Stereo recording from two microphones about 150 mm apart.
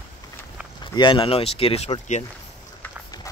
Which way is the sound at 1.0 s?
35° left (ahead or behind).